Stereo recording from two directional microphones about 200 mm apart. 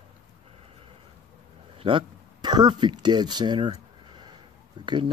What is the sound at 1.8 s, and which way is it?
Speech, 25° right (ahead or behind).